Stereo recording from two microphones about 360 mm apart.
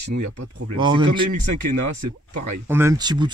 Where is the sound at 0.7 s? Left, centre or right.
Centre.